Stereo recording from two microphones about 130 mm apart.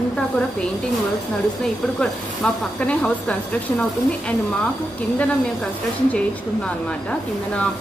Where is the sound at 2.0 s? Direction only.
10° left (ahead or behind).